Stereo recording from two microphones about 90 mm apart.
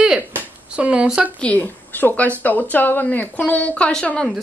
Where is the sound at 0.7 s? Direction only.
15° right (ahead or behind).